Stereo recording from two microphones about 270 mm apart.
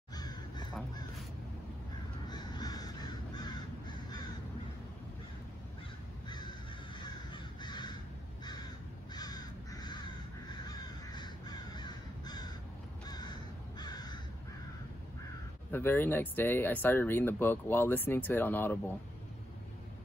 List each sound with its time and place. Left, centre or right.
0.1 s crow: centre
2.2 s crow: centre
6.2 s crow: centre
9.1 s crow: centre
15.7 s speech: centre